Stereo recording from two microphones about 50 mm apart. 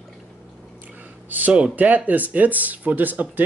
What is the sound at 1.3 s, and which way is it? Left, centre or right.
Speech, right.